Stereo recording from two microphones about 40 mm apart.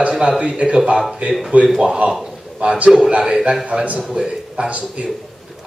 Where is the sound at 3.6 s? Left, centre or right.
Right.